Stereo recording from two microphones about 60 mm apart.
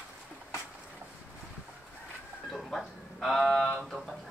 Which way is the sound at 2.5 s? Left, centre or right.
Centre.